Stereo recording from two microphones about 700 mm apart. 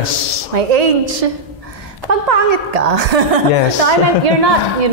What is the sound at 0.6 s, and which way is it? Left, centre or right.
A woman's voice, right.